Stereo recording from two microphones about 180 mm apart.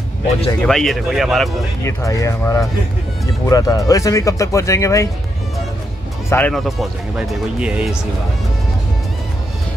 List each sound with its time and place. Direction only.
0.6 s speech: centre (ahead or behind)
1.8 s speech: 15° left (ahead or behind)
6.3 s speech: 5° left (ahead or behind)